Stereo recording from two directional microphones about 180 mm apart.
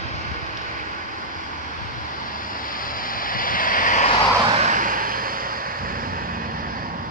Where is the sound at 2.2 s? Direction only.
50° left (ahead or behind).